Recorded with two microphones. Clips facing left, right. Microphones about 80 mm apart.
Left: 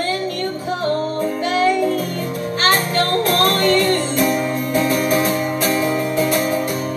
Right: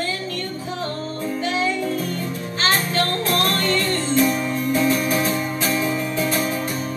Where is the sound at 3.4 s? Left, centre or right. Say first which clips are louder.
Left 6 dB; left.